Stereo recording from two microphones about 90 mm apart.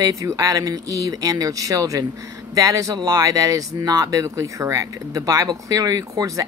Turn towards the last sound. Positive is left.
turn(degrees=-40)  # may be behind; listen again after turning